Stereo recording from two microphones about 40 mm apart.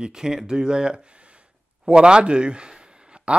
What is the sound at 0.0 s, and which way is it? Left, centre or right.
Speech, centre.